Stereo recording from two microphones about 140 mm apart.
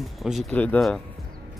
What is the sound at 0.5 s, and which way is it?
Speech, 10° left (ahead or behind).